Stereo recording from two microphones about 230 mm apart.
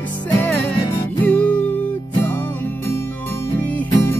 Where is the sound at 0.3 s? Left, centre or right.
Centre.